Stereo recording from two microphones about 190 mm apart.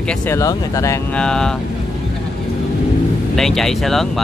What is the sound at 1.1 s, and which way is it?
Speech, 5° left (ahead or behind).